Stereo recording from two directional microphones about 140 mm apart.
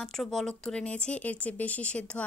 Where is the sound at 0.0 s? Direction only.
5° left (ahead or behind).